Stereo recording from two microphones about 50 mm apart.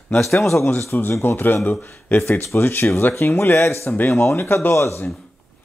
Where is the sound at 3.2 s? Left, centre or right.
Left.